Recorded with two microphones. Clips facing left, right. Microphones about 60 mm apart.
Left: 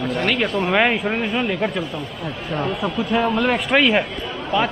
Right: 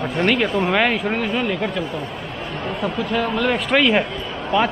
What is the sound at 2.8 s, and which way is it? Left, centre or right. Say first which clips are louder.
Speech: even; centre.